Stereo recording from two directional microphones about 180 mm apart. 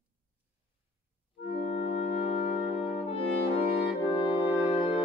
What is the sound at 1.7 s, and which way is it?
Music, 35° left (ahead or behind).